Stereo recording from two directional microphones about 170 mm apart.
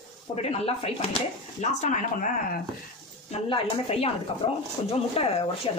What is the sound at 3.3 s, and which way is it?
Speech, 35° left (ahead or behind).